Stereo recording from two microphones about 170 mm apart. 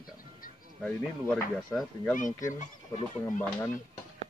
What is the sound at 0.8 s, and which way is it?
Speech, 5° left (ahead or behind).